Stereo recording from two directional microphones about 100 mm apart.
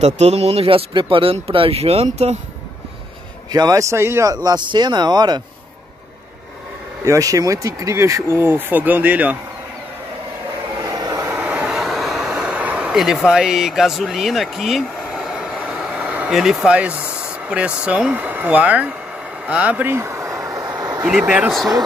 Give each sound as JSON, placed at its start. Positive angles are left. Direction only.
{"t": 0.0, "sound": "speech", "side_deg": -90}
{"t": 3.5, "sound": "speech", "side_deg": -35}
{"t": 4.3, "sound": "speech", "side_deg": -40}
{"t": 7.1, "sound": "speech", "side_deg": -35}
{"t": 10.8, "sound": "a sound", "side_deg": -40}
{"t": 11.2, "sound": "vehicle", "side_deg": -10}
{"t": 16.3, "sound": "speech", "side_deg": -5}
{"t": 19.4, "sound": "vehicle", "side_deg": -15}
{"t": 21.0, "sound": "speech", "side_deg": -10}
{"t": 21.5, "sound": "speech", "side_deg": 0}